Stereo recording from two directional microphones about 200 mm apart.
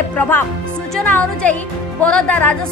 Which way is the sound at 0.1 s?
10° left (ahead or behind).